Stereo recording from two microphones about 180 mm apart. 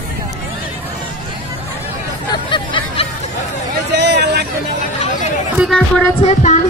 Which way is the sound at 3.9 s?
70° right (ahead or behind).